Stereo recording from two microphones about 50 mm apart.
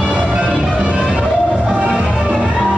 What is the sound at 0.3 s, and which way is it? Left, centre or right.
Music, centre.